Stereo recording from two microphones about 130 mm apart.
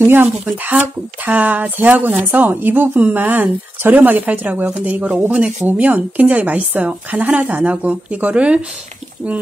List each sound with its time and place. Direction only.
0.0 s speech: 15° right (ahead or behind)